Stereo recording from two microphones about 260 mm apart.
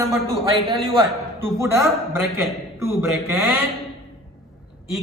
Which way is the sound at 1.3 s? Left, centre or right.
Centre.